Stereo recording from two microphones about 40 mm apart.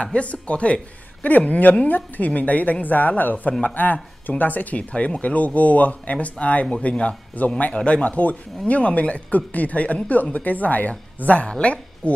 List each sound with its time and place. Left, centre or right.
0.0 s speech: left
7.7 s a woman's voice: left